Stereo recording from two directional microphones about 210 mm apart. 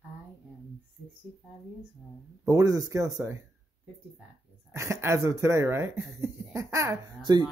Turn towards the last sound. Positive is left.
turn(degrees=-20)  # may be behind; listen again after turning